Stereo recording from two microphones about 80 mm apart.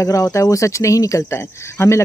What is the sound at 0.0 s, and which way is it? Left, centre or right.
Speech, left.